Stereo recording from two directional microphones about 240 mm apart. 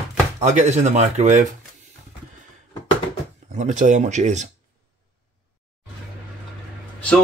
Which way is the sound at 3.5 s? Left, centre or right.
Right.